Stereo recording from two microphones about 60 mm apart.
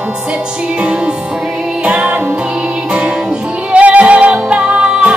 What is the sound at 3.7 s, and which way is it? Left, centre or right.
Music, right.